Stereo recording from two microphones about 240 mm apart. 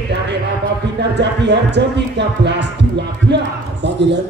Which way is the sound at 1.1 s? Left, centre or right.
Right.